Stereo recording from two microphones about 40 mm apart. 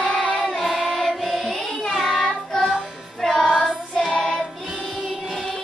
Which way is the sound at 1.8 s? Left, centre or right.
Centre.